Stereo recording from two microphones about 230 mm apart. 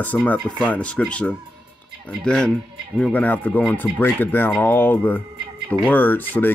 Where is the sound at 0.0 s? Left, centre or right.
Centre.